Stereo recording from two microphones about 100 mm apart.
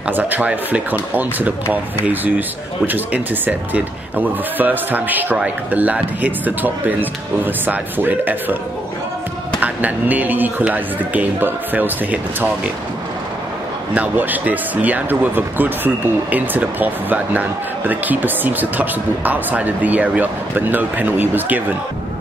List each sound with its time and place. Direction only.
0.1 s speech: 15° right (ahead or behind)
9.6 s speech: 15° right (ahead or behind)
13.9 s speech: 15° right (ahead or behind)